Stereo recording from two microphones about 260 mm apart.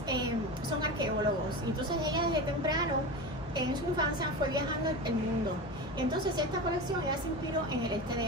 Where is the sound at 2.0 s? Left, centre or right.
Centre.